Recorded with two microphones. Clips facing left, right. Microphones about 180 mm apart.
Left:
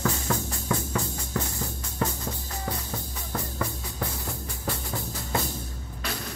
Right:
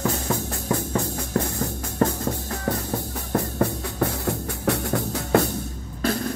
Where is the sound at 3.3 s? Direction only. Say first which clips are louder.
Right 9 dB; 60° right (ahead or behind).